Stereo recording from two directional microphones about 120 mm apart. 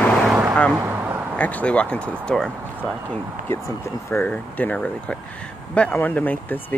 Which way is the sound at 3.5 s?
20° left (ahead or behind).